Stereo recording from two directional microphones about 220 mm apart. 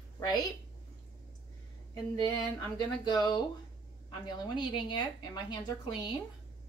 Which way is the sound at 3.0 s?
20° left (ahead or behind).